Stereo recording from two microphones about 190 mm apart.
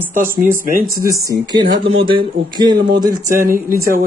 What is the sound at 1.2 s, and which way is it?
Speech, 20° right (ahead or behind).